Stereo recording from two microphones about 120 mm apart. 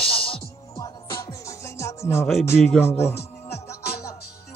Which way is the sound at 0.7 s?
30° left (ahead or behind).